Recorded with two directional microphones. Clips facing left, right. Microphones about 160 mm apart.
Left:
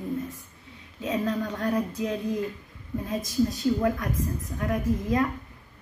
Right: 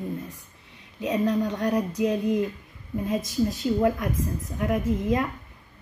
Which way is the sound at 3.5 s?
25° right (ahead or behind).